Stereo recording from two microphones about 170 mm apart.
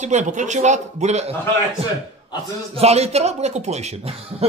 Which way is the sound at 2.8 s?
40° right (ahead or behind).